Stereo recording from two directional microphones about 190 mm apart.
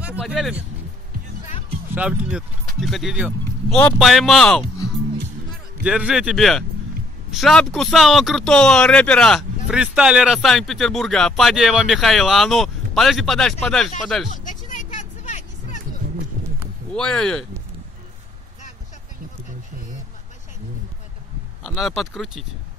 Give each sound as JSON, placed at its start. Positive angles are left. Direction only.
{"t": 0.0, "sound": "speech", "side_deg": -5}
{"t": 2.0, "sound": "speech", "side_deg": -5}
{"t": 5.9, "sound": "speech", "side_deg": -5}
{"t": 14.3, "sound": "music", "side_deg": 45}
{"t": 16.9, "sound": "speech", "side_deg": 5}
{"t": 21.6, "sound": "speech", "side_deg": 0}